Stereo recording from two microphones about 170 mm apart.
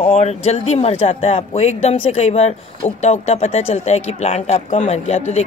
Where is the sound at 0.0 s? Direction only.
40° left (ahead or behind).